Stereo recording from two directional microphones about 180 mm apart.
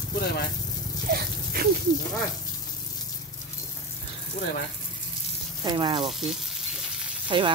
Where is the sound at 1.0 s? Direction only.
55° right (ahead or behind).